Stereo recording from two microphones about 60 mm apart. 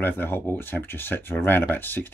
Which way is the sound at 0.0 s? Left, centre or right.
Left.